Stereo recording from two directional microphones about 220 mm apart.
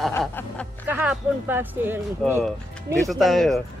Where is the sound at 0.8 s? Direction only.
10° right (ahead or behind).